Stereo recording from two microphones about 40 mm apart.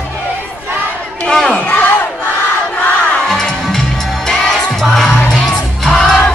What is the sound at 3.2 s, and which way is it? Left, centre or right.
Music, centre.